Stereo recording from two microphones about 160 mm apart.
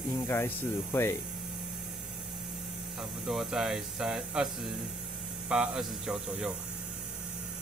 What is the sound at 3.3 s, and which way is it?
Speech, 5° right (ahead or behind).